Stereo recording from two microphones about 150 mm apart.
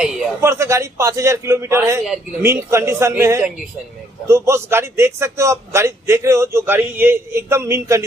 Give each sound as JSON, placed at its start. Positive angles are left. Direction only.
{"t": 0.4, "sound": "a man's voice", "side_deg": -20}